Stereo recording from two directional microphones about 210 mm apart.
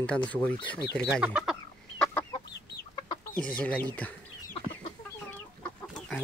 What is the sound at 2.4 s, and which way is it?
Chicken, 50° left (ahead or behind).